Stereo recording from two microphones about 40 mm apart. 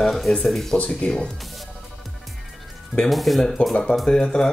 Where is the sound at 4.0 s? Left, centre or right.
Centre.